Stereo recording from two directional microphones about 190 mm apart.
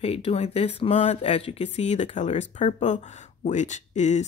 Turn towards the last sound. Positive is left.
turn(degrees=40)  # may be behind; listen again after turning